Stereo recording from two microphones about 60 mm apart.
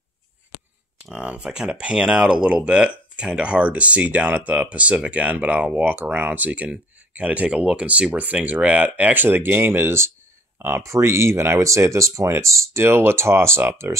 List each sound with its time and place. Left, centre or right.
1.1 s speech: centre; by 13.9 s right